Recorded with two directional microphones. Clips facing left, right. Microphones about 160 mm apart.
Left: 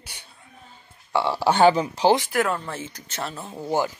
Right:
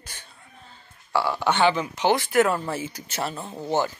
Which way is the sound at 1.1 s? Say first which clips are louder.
Left 2 dB; 30° left (ahead or behind).